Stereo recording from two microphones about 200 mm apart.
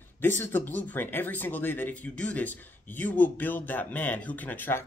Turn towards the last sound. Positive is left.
turn(degrees=10)  # may be behind; listen again after turning